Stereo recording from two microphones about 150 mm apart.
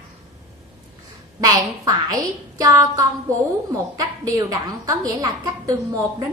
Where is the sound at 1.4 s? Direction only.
25° right (ahead or behind).